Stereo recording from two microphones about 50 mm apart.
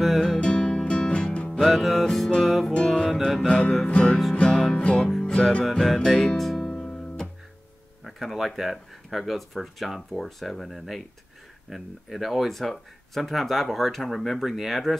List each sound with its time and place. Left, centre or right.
0.2 s music: centre
1.6 s speech: centre
2.7 s music: centre
8.0 s speech: centre